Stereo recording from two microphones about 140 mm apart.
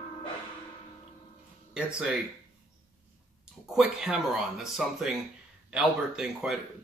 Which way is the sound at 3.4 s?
5° right (ahead or behind).